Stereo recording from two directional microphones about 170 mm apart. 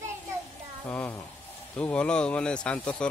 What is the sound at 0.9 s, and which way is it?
Speech, 10° left (ahead or behind).